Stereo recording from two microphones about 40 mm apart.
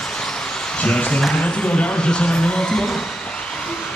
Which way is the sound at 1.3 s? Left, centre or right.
Left.